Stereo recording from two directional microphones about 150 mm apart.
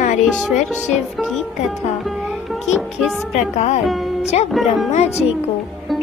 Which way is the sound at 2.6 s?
Centre (ahead or behind).